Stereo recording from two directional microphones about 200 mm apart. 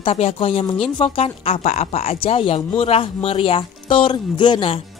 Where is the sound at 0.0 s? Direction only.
30° left (ahead or behind).